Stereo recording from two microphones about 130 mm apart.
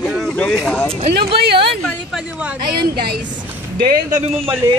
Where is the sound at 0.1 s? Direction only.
5° left (ahead or behind).